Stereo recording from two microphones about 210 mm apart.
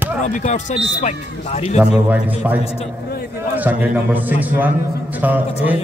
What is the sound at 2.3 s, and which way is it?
A man's voice, 5° right (ahead or behind).